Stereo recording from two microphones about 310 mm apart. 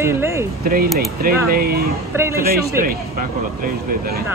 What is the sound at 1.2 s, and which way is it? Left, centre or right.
Speech, right.